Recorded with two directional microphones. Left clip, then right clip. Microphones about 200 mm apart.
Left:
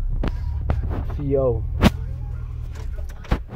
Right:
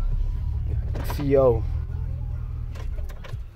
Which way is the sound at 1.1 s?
15° right (ahead or behind).